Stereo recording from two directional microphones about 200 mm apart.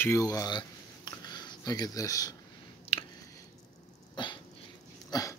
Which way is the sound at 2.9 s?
30° left (ahead or behind).